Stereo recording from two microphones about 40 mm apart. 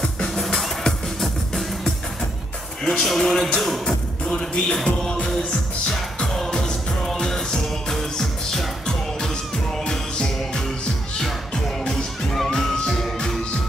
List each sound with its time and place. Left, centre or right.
2.8 s speech: centre
4.8 s music: centre